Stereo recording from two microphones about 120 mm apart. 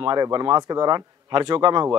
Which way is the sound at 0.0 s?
40° right (ahead or behind).